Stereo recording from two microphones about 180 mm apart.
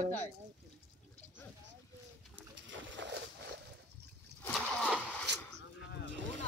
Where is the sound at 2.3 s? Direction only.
90° right.